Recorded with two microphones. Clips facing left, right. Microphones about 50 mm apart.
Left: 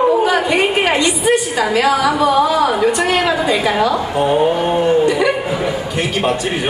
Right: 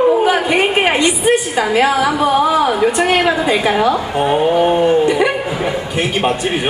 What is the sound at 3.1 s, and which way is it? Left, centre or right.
A woman's voice, centre.